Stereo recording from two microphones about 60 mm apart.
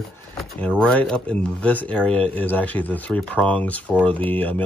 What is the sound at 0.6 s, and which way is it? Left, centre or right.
Speech, centre.